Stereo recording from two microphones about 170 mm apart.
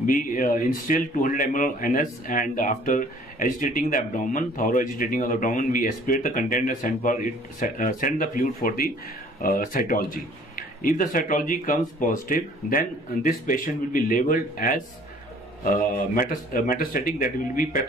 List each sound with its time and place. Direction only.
0.0 s speech: 50° left (ahead or behind)
16.2 s speech: 55° left (ahead or behind)